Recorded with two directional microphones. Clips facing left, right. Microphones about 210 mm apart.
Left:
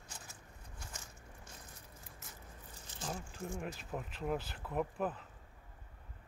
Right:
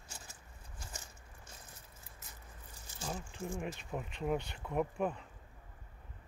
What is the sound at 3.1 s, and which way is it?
Speech, 5° left (ahead or behind).